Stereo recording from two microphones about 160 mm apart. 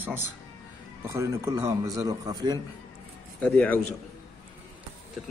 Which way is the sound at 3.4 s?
10° left (ahead or behind).